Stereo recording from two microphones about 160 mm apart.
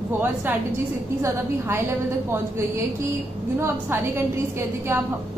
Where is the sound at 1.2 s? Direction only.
15° right (ahead or behind).